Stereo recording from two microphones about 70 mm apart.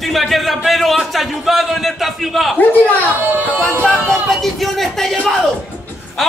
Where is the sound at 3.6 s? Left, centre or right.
Centre.